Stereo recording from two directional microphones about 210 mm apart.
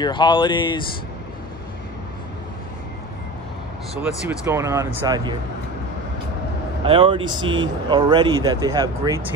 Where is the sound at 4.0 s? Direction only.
10° right (ahead or behind).